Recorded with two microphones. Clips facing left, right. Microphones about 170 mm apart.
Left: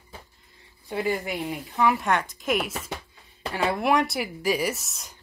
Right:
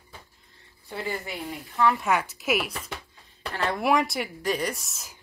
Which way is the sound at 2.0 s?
5° right (ahead or behind).